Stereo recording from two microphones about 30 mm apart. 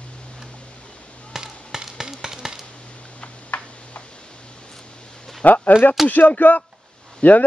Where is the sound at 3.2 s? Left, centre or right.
Left.